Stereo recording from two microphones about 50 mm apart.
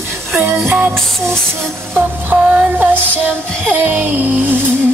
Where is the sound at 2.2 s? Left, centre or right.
Right.